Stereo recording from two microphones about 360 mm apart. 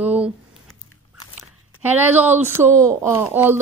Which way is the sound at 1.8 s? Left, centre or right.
Centre.